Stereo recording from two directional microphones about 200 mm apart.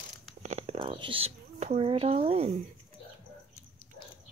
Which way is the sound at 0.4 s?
35° right (ahead or behind).